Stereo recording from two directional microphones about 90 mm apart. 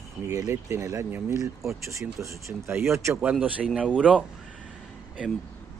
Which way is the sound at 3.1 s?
15° right (ahead or behind).